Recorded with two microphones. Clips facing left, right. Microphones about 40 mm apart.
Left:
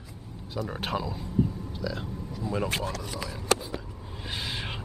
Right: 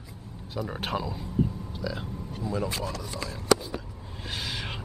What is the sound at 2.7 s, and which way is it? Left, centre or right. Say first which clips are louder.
Speech: left 2 dB; left.